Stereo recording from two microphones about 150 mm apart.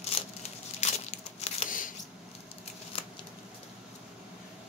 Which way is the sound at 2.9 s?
40° left (ahead or behind).